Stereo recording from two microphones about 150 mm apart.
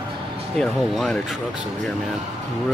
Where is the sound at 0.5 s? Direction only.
Centre (ahead or behind).